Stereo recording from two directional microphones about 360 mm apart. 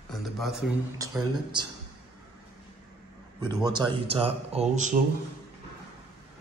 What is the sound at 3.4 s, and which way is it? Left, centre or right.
Speech, centre.